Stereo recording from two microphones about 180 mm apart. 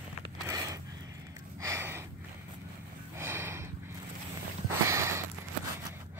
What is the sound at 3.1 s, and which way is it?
Snort, 15° right (ahead or behind).